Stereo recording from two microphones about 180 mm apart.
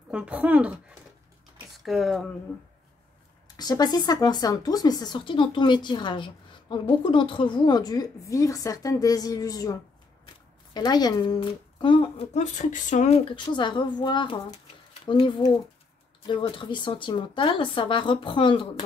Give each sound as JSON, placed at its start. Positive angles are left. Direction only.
{"t": 0.1, "sound": "speech", "side_deg": -5}
{"t": 3.4, "sound": "speech", "side_deg": 20}